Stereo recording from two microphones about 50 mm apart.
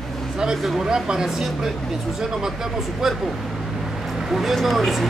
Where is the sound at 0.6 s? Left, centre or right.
Centre.